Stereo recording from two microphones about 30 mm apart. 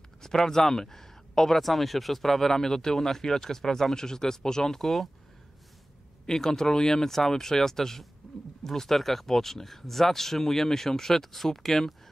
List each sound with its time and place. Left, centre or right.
0.5 s speech: centre
4.8 s speech: centre
6.2 s speech: centre
8.2 s wild animals: centre
8.6 s speech: centre